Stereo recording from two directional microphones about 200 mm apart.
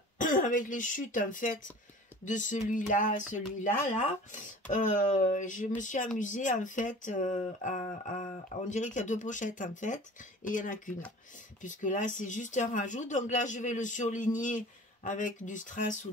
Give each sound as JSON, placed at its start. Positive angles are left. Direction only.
{"t": 0.2, "sound": "speech", "side_deg": 40}